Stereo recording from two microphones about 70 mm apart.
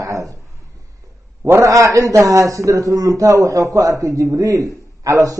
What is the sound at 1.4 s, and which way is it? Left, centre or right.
A man's voice, right.